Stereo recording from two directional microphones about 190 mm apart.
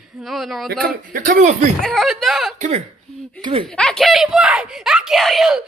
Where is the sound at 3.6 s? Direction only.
5° left (ahead or behind).